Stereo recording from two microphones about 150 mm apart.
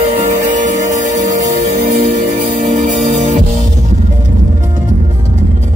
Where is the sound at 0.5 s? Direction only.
55° right (ahead or behind).